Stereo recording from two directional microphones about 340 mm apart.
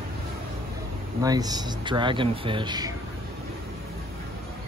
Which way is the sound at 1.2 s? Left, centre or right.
Centre.